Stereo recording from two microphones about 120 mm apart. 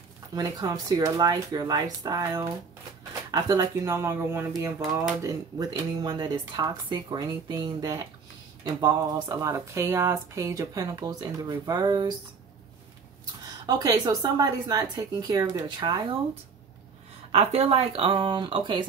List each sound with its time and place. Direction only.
0.3 s speech: 30° right (ahead or behind)
13.7 s speech: 30° right (ahead or behind)
17.3 s speech: 55° right (ahead or behind); by 18.9 s 40° right (ahead or behind)